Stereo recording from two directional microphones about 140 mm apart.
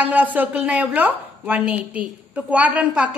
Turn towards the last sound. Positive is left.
turn(degrees=-10)  # may be behind; listen again after turning